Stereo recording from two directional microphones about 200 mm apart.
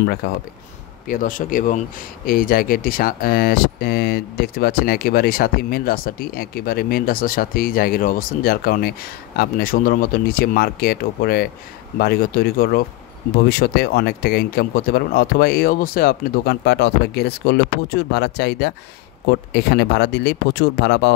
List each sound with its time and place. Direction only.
0.0 s speech: 50° left (ahead or behind)